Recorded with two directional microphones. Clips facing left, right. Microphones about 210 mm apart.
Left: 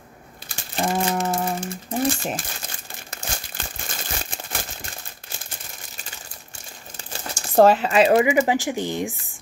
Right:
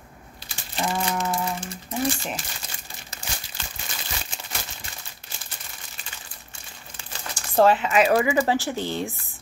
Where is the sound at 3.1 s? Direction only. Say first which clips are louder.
Left 4 dB; 50° left (ahead or behind).